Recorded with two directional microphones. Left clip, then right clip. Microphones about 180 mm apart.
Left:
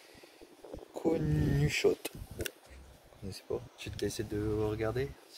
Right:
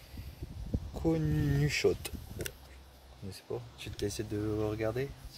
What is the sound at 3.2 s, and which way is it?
Speech, 20° left (ahead or behind).